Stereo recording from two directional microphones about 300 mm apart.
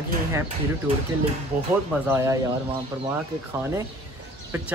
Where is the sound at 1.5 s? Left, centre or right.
Centre.